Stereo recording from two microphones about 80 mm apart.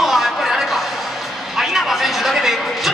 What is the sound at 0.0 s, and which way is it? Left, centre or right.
Music, centre.